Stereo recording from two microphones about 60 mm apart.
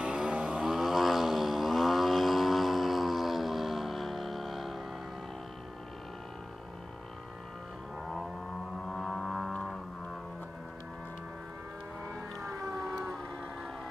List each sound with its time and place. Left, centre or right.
0.0 s vehicle: centre
0.7 s vehicle: centre
8.8 s music: centre